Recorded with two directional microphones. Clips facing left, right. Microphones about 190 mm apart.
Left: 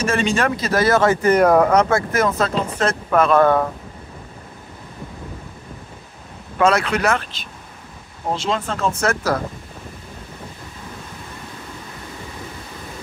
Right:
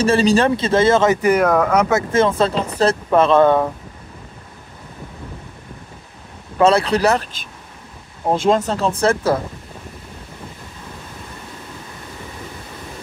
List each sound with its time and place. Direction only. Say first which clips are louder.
0.0 s speech: right 5 dB; 35° right (ahead or behind); by 1.4 s 15° right (ahead or behind)
1.4 s speech: left 2 dB; 5° left (ahead or behind)
1.9 s speech: right 3 dB; 25° right (ahead or behind)
6.6 s speech: right 3 dB; 30° right (ahead or behind)
8.3 s speech: right 6 dB; 45° right (ahead or behind); by 9.4 s 30° right (ahead or behind)